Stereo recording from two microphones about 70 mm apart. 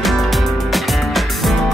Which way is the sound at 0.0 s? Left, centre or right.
Centre.